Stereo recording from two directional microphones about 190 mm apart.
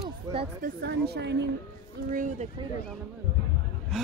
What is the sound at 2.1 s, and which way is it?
Speech, 45° right (ahead or behind).